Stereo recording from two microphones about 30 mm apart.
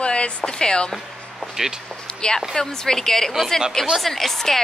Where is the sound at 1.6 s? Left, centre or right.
Centre.